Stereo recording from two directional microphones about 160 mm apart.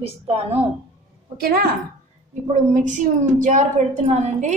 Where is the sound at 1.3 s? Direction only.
70° right (ahead or behind).